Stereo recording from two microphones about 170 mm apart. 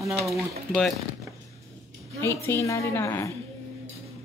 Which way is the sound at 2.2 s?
15° left (ahead or behind).